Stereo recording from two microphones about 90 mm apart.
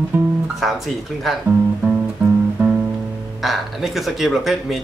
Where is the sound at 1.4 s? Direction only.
20° right (ahead or behind).